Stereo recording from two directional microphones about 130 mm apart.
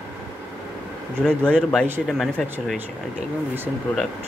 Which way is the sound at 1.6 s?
5° left (ahead or behind).